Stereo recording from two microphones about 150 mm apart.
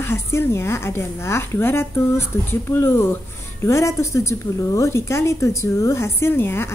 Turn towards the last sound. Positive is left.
turn(degrees=15)  # may be behind; listen again after turning